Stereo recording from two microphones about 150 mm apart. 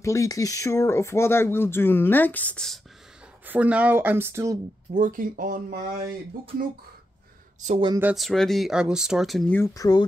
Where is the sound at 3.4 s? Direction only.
10° right (ahead or behind).